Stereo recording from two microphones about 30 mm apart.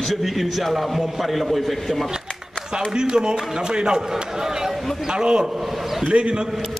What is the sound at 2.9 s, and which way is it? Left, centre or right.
A man's voice, right.